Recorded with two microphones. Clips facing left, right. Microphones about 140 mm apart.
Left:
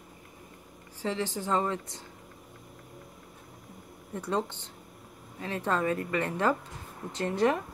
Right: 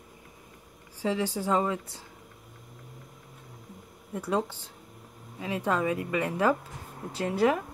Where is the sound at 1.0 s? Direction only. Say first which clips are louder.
Right 3 dB; 10° right (ahead or behind).